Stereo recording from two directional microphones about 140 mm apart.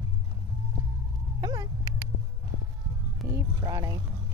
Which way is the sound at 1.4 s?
25° right (ahead or behind).